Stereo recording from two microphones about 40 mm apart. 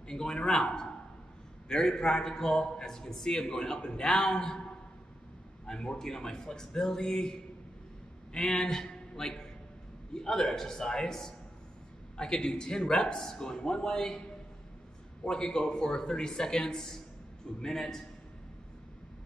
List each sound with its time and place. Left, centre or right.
0.1 s a man's voice: centre
5.7 s a man's voice: centre
8.4 s a man's voice: centre
12.2 s a man's voice: left
15.2 s a man's voice: centre